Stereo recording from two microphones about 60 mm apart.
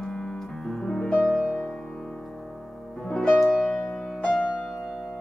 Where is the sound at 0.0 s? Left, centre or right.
Centre.